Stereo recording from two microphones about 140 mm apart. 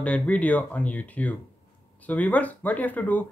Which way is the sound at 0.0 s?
10° left (ahead or behind).